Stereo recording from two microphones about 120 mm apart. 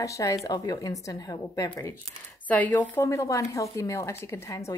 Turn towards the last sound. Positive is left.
turn(degrees=25)  # may be behind; listen again after turning